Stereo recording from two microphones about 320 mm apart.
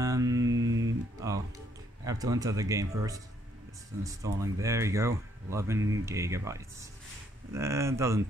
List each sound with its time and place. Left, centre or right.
0.0 s mantra: centre
0.6 s guitar: right
2.0 s speech: centre